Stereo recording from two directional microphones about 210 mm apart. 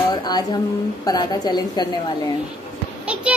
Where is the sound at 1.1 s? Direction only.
20° left (ahead or behind).